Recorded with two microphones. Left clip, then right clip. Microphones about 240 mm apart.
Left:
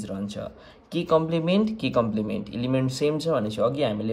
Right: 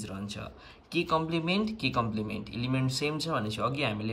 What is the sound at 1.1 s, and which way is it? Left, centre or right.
Speech, left.